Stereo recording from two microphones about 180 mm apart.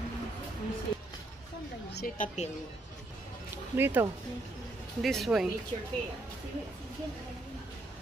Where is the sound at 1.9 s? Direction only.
50° left (ahead or behind).